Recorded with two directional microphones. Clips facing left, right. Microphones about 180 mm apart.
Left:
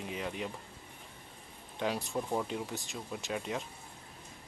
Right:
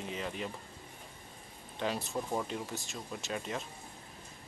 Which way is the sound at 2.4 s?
15° left (ahead or behind).